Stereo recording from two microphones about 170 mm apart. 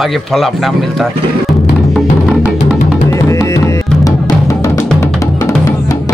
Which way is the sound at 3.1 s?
20° left (ahead or behind).